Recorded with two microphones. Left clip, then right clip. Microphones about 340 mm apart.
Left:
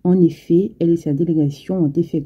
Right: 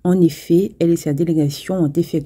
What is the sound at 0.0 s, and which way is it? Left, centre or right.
Speech, right.